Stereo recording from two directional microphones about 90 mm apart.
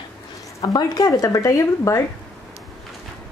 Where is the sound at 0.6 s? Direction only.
50° left (ahead or behind).